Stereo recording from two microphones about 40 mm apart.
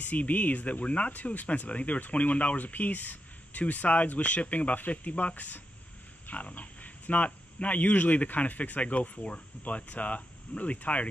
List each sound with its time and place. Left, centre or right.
0.0 s speech: left
6.3 s speech: left